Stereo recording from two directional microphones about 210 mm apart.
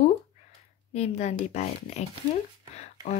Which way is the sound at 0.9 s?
30° left (ahead or behind).